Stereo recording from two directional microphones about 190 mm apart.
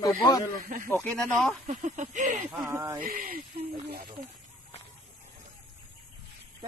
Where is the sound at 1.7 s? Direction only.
40° right (ahead or behind).